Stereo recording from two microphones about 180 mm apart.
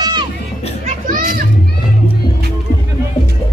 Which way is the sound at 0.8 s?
45° right (ahead or behind).